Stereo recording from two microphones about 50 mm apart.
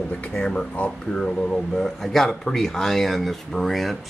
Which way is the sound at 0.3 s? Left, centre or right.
Centre.